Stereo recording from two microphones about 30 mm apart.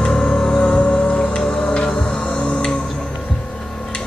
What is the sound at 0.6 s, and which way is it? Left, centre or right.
Music, left.